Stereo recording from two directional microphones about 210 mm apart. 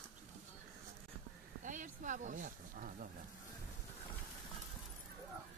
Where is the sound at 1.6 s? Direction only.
35° right (ahead or behind).